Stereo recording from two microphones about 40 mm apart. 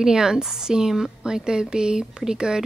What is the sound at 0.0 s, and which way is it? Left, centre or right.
Speech, centre.